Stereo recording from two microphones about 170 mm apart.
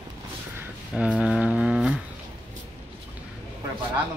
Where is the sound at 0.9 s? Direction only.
5° right (ahead or behind).